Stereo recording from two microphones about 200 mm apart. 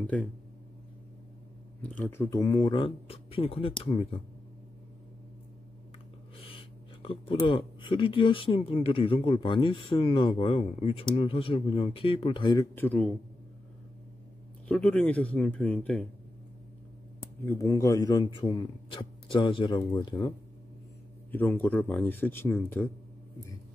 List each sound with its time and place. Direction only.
0.0 s speech: 5° left (ahead or behind)
1.8 s speech: 10° left (ahead or behind); by 4.2 s 30° left (ahead or behind)
6.3 s speech: 30° left (ahead or behind)
12.7 s speech: 10° left (ahead or behind)
14.7 s speech: 5° left (ahead or behind)
17.2 s speech: 15° left (ahead or behind)
21.3 s speech: 10° left (ahead or behind)